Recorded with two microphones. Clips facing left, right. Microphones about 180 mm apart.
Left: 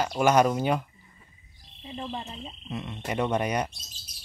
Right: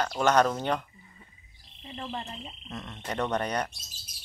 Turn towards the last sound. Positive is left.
turn(degrees=10)  # may be behind; listen again after turning